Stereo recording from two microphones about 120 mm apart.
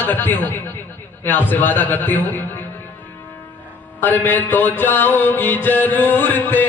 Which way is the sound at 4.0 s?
15° left (ahead or behind).